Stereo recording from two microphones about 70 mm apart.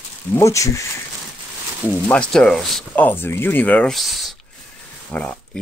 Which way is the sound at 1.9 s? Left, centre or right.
Centre.